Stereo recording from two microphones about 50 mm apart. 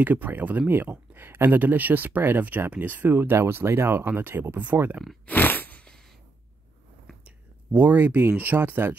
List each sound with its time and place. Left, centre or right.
0.0 s speech: right
4.7 s speech: right
5.2 s a sound: left
7.7 s speech: right